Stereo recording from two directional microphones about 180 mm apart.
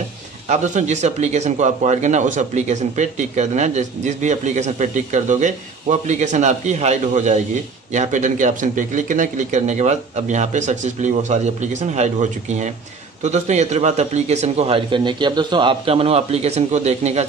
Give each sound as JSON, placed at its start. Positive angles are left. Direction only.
{"t": 0.5, "sound": "speech", "side_deg": -40}